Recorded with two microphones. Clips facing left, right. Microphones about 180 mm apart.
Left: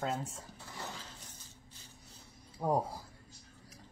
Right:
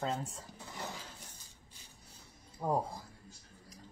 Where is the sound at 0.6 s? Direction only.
15° right (ahead or behind).